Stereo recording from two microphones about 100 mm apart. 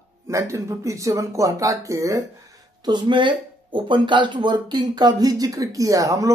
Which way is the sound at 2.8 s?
50° right (ahead or behind).